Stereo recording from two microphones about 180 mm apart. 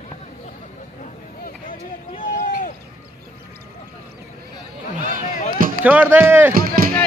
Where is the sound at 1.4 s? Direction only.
50° left (ahead or behind).